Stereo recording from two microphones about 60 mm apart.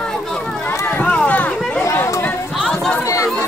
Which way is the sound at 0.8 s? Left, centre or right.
Left.